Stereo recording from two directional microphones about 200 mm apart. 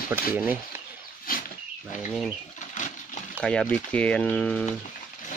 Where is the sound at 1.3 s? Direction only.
45° left (ahead or behind).